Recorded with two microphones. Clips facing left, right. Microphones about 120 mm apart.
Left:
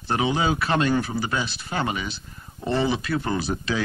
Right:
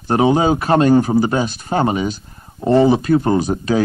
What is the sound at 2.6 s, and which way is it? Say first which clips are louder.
Speech: right 11 dB; 50° right (ahead or behind).